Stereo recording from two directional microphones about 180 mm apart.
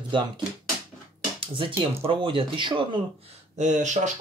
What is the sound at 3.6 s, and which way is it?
Speech, 40° right (ahead or behind).